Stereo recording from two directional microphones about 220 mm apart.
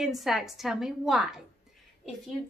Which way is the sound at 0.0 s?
Centre (ahead or behind).